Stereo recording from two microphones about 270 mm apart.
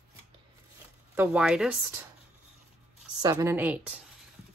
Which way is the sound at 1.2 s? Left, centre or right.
Centre.